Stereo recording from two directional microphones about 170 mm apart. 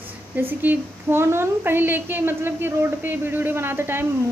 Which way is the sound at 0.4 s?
10° right (ahead or behind).